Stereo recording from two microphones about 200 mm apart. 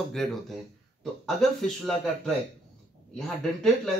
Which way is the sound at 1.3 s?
Centre (ahead or behind).